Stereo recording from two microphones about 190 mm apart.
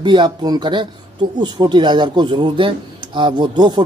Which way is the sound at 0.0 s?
25° right (ahead or behind).